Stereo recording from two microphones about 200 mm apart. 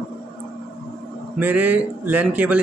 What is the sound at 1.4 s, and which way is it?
Speech, 5° right (ahead or behind).